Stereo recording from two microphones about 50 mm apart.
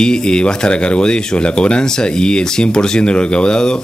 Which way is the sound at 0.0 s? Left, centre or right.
Centre.